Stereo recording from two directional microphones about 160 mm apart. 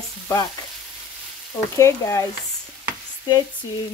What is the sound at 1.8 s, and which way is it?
Stir, 20° left (ahead or behind).